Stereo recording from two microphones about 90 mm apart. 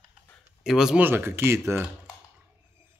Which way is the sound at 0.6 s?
5° right (ahead or behind).